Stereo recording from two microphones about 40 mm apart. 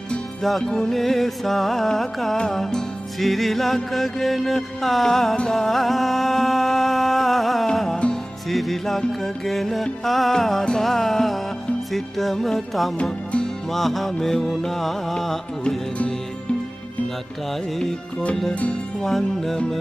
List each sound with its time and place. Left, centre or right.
0.4 s music: centre
18.5 s music: left
19.0 s music: centre